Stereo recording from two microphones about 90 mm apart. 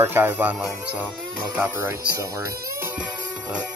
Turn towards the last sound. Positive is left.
turn(degrees=-10)  # may be behind; listen again after turning